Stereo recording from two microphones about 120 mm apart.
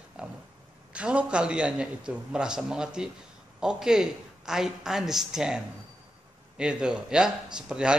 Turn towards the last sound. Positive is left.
turn(degrees=-5)  # may be behind; listen again after turning